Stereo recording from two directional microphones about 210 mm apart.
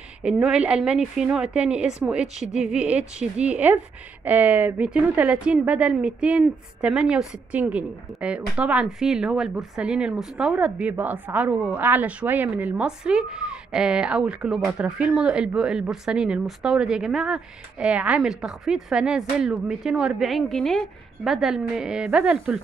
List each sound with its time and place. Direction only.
0.2 s a woman's voice: 5° right (ahead or behind)